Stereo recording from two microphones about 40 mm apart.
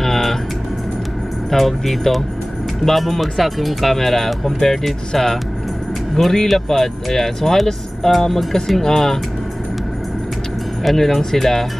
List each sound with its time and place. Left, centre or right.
0.0 s vehicle: centre
1.5 s speech: centre
10.8 s speech: centre